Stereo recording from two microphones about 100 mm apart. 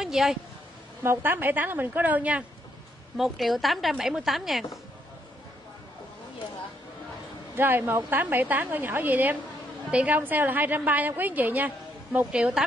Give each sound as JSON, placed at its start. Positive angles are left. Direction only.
{"t": 0.0, "sound": "speech", "side_deg": -5}
{"t": 1.0, "sound": "a woman's voice", "side_deg": -25}
{"t": 3.2, "sound": "speech", "side_deg": 0}
{"t": 7.5, "sound": "a woman's voice", "side_deg": -20}